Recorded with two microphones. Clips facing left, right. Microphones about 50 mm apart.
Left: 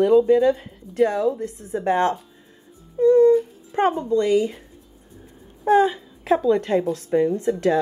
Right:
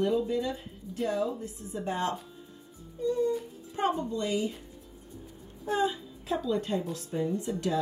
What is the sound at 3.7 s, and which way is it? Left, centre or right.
Speech, left.